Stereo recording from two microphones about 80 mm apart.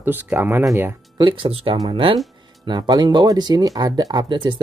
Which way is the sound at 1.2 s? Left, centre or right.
Right.